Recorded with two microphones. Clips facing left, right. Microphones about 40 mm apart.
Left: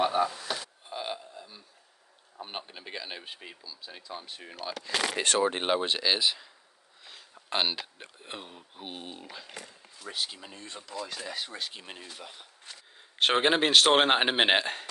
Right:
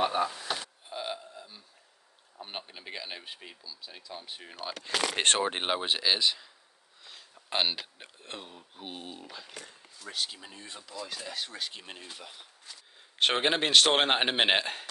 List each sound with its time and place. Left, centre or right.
0.0 s a sound: centre
0.8 s burping: centre
2.4 s speech: centre
4.4 s speech: centre
5.1 s speech: right
5.4 s speech: centre
5.7 s speech: centre